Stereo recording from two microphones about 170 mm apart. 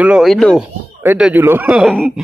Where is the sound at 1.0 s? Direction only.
10° right (ahead or behind).